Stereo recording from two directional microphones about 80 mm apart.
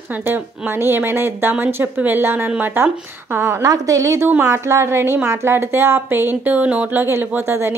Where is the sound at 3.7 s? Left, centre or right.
Right.